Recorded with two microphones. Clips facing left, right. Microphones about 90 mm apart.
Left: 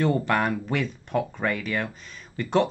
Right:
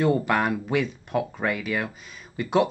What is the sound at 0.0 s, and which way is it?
Speech, 5° right (ahead or behind).